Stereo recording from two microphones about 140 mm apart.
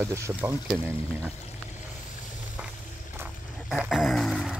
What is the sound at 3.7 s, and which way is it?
Music, centre (ahead or behind).